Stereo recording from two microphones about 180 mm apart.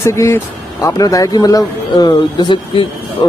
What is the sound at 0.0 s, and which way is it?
A man's voice, 15° left (ahead or behind).